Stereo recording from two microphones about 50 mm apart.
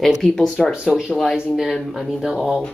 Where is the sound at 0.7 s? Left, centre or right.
Centre.